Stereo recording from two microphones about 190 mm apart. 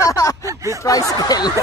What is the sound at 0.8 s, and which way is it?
Speech, 20° left (ahead or behind).